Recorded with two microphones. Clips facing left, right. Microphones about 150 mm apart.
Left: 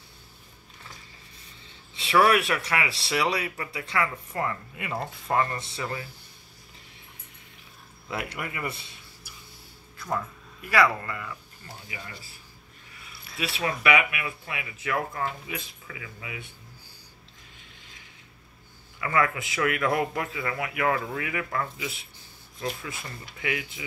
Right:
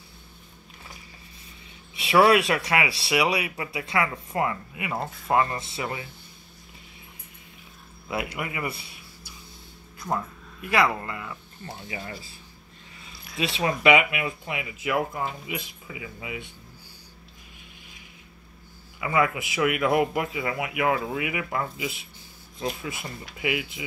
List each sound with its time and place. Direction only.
2.0 s speech: 15° right (ahead or behind)
8.1 s speech: 10° right (ahead or behind)
10.7 s speech: 15° right (ahead or behind)
11.9 s speech: 30° right (ahead or behind)
13.4 s speech: 20° right (ahead or behind)
18.9 s speech: 15° right (ahead or behind)